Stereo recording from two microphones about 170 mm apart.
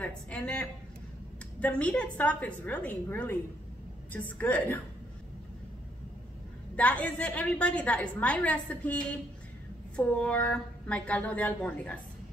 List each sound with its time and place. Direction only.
0.0 s a woman's voice: 5° left (ahead or behind)
6.8 s a woman's voice: 10° left (ahead or behind)
9.9 s a woman's voice: 5° left (ahead or behind)